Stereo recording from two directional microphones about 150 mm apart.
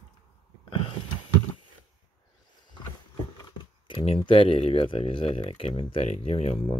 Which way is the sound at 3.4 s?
30° left (ahead or behind).